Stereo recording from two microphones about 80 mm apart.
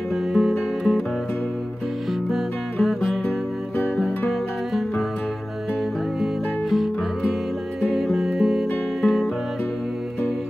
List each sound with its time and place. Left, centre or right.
0.1 s music: centre
2.3 s music: centre
3.7 s music: left
4.3 s music: centre
6.2 s music: centre